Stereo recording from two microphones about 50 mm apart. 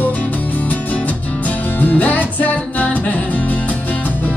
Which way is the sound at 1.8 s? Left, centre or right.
Left.